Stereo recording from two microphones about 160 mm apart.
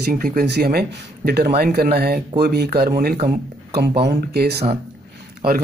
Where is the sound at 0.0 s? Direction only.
60° right (ahead or behind); by 4.6 s 90° right.